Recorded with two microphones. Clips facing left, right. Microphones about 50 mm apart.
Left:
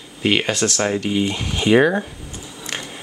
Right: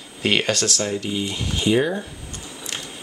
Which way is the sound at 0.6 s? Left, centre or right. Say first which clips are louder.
Left 4 dB; left.